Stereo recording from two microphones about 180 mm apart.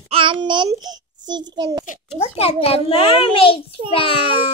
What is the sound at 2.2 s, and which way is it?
A child's voice, 35° left (ahead or behind).